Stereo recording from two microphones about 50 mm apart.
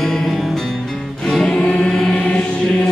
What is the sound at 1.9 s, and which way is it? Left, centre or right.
Music, centre.